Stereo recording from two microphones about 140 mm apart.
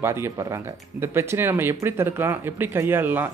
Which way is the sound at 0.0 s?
20° right (ahead or behind).